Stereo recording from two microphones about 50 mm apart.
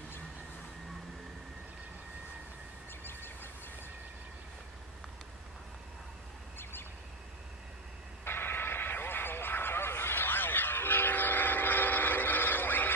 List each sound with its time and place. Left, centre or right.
3.1 s a sound: left
6.6 s bird: left
8.2 s vehicle: left